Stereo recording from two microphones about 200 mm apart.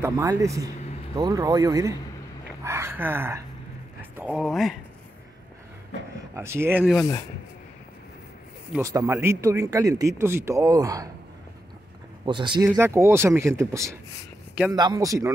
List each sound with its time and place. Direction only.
0.0 s speech: 15° right (ahead or behind)
6.3 s speech: 15° right (ahead or behind)
8.7 s speech: 15° right (ahead or behind)
12.3 s speech: 25° right (ahead or behind)